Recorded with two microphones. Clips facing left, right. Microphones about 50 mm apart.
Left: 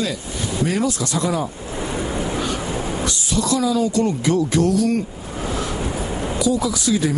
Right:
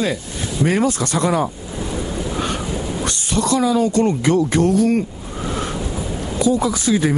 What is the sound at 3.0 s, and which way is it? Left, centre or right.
Speech, right.